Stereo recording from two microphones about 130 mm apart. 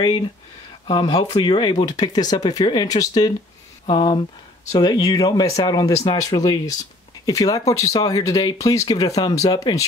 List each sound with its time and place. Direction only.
0.8 s speech: 45° left (ahead or behind)